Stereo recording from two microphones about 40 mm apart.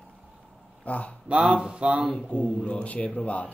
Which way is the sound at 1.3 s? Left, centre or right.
Right.